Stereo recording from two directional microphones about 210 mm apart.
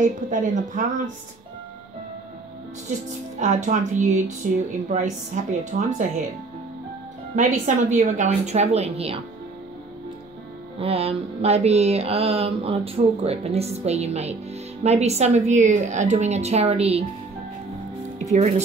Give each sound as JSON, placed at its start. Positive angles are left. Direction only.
{"t": 0.0, "sound": "mantra", "side_deg": -35}
{"t": 3.3, "sound": "mantra", "side_deg": -35}
{"t": 7.3, "sound": "mantra", "side_deg": -35}
{"t": 10.8, "sound": "mantra", "side_deg": -30}